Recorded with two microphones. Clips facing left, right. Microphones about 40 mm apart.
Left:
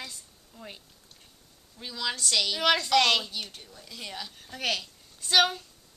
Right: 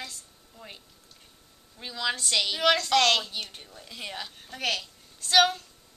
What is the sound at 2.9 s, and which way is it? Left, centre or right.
Speech, centre.